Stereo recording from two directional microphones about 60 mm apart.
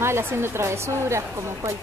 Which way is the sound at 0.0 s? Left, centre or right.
Right.